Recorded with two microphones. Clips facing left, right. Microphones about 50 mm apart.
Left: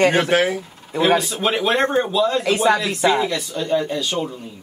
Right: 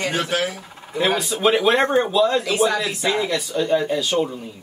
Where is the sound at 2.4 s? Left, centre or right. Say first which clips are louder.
Left 3 dB; left.